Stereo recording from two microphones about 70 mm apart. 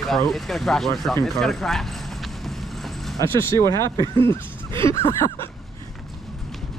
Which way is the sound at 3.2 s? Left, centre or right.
Left.